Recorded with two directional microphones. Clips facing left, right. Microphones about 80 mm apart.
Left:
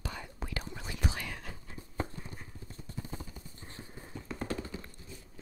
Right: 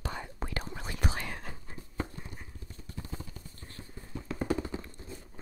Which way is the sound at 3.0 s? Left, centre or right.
Centre.